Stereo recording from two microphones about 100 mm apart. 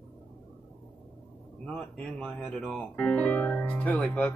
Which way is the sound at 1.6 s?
5° left (ahead or behind).